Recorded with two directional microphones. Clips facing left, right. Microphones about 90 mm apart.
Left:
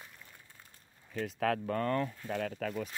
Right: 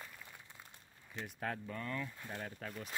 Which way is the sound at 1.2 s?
90° left.